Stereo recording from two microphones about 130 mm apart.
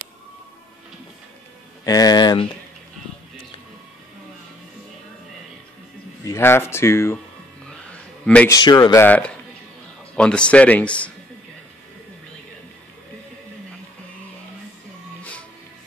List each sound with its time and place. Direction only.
1.9 s speech: 30° left (ahead or behind)
6.2 s speech: 20° left (ahead or behind)
8.5 s speech: 30° left (ahead or behind)
9.0 s speech: 10° left (ahead or behind)